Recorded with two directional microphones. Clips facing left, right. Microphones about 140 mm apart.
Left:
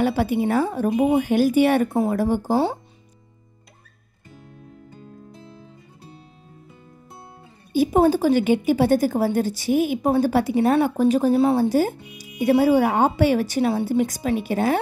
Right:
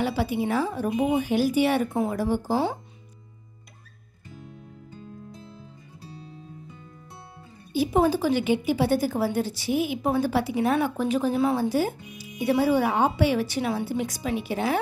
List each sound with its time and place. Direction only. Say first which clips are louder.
0.0 s speech: left 5 dB; 50° left (ahead or behind)
0.7 s speech: left 5 dB; 35° left (ahead or behind)
1.1 s speech: left 4 dB; 55° left (ahead or behind)
1.9 s speech: left 5 dB; 35° left (ahead or behind)
2.1 s speech: left 4 dB; 50° left (ahead or behind)
7.7 s speech: left 4 dB; 45° left (ahead or behind)